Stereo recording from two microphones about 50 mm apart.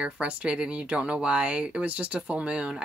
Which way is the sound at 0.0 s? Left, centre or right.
Right.